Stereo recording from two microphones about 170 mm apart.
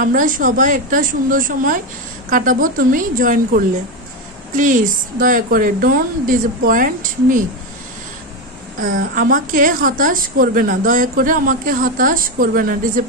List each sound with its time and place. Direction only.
0.0 s a woman's voice: 50° right (ahead or behind)
8.8 s a woman's voice: 55° right (ahead or behind)